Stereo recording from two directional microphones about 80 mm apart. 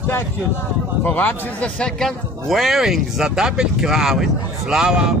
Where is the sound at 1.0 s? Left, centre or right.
Left.